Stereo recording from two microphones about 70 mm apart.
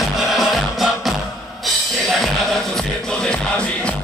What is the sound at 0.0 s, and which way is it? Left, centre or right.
Music, centre.